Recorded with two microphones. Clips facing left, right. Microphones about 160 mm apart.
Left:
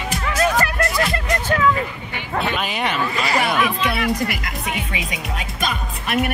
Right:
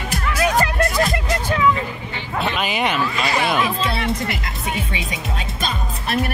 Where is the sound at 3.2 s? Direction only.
25° right (ahead or behind).